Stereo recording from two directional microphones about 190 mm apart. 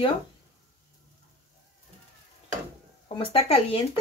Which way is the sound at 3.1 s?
30° left (ahead or behind).